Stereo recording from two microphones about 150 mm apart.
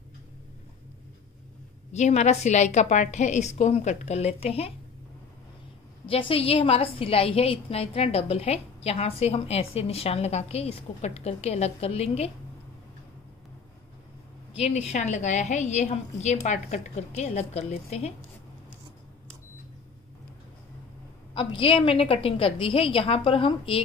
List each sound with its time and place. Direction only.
1.9 s a woman's voice: 50° left (ahead or behind)
6.0 s a woman's voice: 40° left (ahead or behind)
14.5 s a woman's voice: 45° left (ahead or behind)
21.4 s a woman's voice: 35° left (ahead or behind)